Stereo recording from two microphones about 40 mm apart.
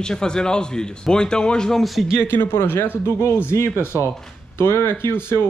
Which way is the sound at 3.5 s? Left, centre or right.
Left.